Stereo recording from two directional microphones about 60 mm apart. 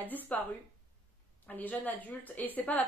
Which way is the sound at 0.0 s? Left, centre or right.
Left.